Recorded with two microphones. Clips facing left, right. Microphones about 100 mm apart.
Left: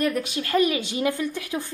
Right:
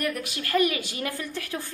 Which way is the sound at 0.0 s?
25° left (ahead or behind).